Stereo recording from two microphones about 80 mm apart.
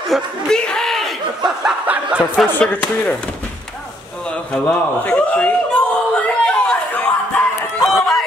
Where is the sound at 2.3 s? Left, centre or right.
Centre.